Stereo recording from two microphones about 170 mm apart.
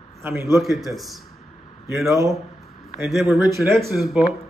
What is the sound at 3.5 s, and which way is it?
Speech, 15° right (ahead or behind).